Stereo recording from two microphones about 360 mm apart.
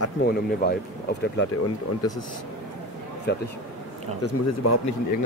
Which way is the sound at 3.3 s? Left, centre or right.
Left.